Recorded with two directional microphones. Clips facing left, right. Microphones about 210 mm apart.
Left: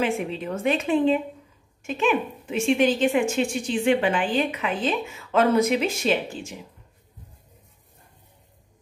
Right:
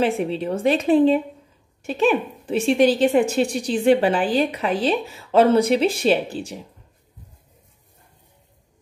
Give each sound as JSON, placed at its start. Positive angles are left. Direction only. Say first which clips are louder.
{"t": 0.0, "sound": "a woman's voice", "louder": "right 4 dB", "side_deg": -35}